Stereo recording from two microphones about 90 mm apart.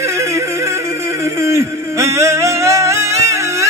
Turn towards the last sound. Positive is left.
turn(degrees=-35)  # may be behind; listen again after turning